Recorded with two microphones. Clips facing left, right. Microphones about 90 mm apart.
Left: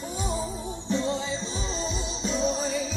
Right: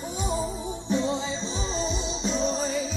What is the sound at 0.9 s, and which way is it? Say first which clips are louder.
Music: right 1 dB; 20° right (ahead or behind).